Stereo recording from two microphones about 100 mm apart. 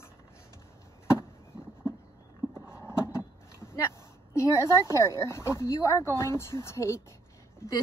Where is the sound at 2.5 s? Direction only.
10° right (ahead or behind).